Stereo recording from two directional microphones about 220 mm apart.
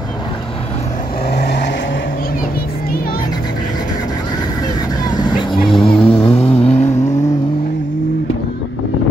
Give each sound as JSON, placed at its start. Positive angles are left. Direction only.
{"t": 1.3, "sound": "vehicle", "side_deg": 50}
{"t": 5.7, "sound": "vehicle", "side_deg": 25}